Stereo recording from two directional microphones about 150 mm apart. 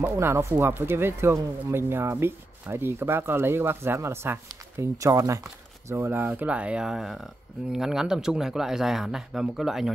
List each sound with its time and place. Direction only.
0.0 s speech: 15° right (ahead or behind)